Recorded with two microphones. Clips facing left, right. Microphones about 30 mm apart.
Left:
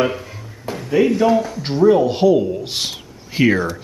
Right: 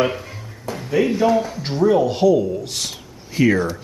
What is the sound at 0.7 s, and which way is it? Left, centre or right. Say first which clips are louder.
Speech: left 3 dB; centre.